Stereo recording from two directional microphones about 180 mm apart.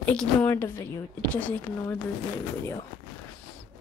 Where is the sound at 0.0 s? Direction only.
5° left (ahead or behind).